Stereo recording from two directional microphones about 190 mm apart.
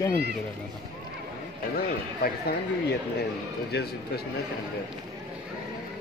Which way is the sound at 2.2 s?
55° left (ahead or behind).